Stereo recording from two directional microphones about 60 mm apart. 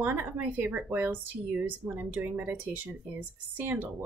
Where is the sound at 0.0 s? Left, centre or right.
Right.